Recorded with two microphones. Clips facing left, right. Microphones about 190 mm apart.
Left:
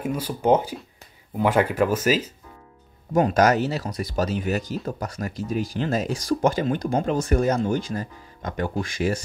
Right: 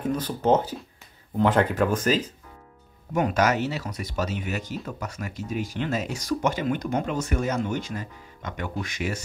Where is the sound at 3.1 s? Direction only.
35° left (ahead or behind).